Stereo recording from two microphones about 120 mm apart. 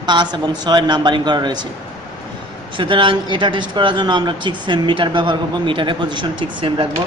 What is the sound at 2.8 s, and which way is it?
A man's voice, 45° right (ahead or behind).